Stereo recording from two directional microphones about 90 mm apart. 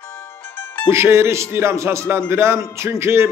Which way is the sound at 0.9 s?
30° right (ahead or behind).